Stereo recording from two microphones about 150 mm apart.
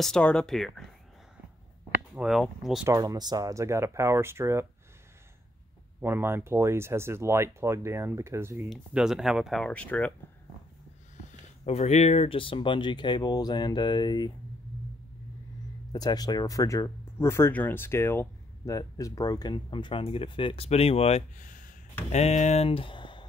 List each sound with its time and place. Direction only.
0.0 s speech: 5° left (ahead or behind)
2.1 s speech: centre (ahead or behind)
2.9 s speech: 25° right (ahead or behind)
5.9 s speech: 15° right (ahead or behind)
8.6 s speech: centre (ahead or behind)
11.6 s speech: 45° left (ahead or behind); by 14.3 s 30° left (ahead or behind)
15.9 s speech: 25° left (ahead or behind); by 21.2 s 40° left (ahead or behind)
21.4 s a sound: 60° left (ahead or behind)
22.1 s speech: 50° left (ahead or behind); by 23.2 s 35° left (ahead or behind)